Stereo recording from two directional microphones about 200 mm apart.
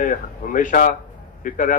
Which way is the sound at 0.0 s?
40° left (ahead or behind).